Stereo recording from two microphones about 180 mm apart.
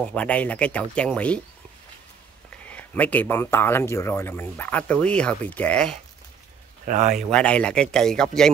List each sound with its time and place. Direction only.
0.0 s speech: 5° left (ahead or behind)
2.7 s speech: 10° left (ahead or behind)
6.9 s speech: 45° right (ahead or behind)
7.2 s speech: 5° left (ahead or behind)